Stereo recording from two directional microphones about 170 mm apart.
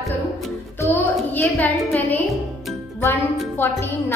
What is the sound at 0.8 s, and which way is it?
Music, 10° left (ahead or behind).